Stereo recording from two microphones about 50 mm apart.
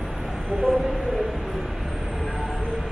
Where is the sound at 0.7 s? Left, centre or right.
Centre.